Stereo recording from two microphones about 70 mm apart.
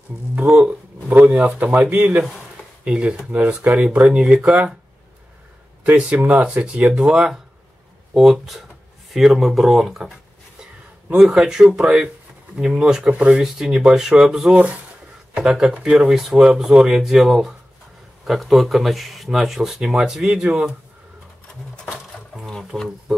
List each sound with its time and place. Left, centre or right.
0.4 s a sound: centre
2.8 s speech: centre
5.9 s speech: right; by 10.0 s centre
11.1 s speech: centre
21.9 s a sound: centre
22.7 s speech: centre